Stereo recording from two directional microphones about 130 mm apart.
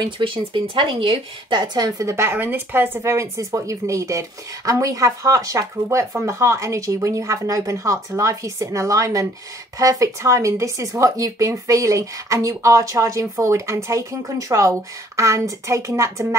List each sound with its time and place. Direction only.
0.0 s speech: 40° right (ahead or behind); by 16.3 s 25° right (ahead or behind)